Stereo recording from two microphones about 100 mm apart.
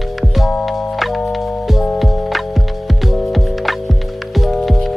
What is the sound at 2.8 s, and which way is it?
Music, centre (ahead or behind).